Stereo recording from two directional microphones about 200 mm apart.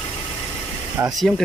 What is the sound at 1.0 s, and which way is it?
Speech, 15° right (ahead or behind).